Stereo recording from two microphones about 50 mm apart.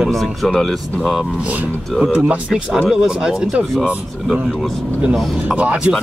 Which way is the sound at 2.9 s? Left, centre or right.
Centre.